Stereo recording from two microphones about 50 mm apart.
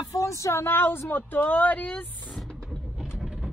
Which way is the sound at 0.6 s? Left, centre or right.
Left.